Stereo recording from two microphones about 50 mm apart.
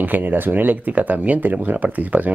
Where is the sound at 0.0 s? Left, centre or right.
Right.